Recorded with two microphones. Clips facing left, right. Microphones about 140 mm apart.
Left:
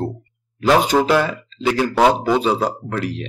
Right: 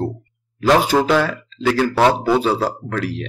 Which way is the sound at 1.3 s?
15° left (ahead or behind).